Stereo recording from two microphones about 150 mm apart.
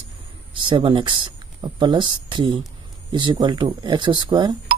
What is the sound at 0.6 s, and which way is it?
Speech, 35° right (ahead or behind).